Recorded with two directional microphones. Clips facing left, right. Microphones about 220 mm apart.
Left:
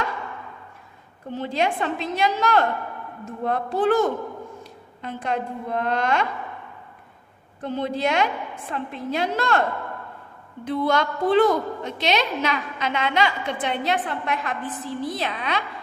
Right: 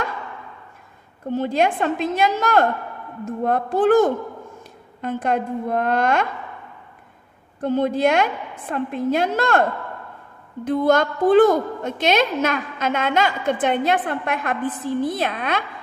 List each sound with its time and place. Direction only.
1.3 s a woman's voice: 50° right (ahead or behind)
7.6 s a woman's voice: 50° right (ahead or behind)